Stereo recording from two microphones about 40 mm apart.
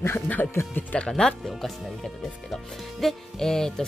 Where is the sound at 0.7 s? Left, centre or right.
Left.